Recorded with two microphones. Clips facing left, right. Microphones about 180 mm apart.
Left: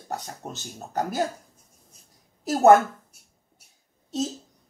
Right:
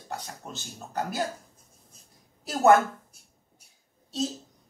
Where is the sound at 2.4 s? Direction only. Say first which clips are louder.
Left 4 dB; 45° left (ahead or behind).